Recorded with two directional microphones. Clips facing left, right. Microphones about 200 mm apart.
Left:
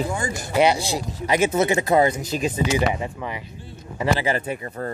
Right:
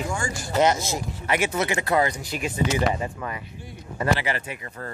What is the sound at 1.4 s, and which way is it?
Speech, 25° left (ahead or behind).